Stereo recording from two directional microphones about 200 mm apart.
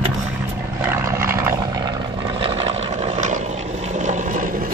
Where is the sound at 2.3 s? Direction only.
30° right (ahead or behind).